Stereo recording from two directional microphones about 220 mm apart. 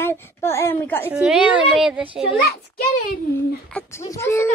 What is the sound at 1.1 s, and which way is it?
A woman's voice, 5° right (ahead or behind).